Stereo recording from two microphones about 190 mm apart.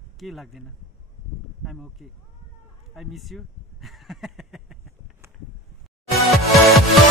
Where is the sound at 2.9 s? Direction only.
Centre (ahead or behind).